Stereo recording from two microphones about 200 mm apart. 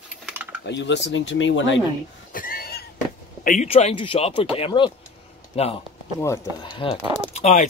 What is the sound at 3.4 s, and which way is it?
Speech, 40° left (ahead or behind).